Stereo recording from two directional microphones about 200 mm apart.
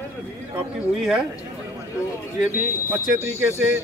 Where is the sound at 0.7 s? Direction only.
Centre (ahead or behind).